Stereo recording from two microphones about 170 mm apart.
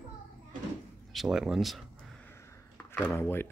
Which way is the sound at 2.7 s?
10° left (ahead or behind).